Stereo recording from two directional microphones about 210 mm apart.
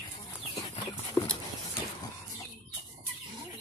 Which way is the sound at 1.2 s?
20° left (ahead or behind).